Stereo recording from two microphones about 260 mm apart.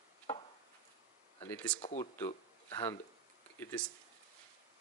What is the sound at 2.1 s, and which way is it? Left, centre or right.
Speech, centre.